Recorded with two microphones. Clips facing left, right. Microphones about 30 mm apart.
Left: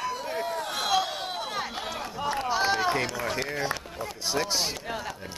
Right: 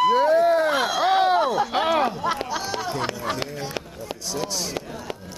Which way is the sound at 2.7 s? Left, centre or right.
Left.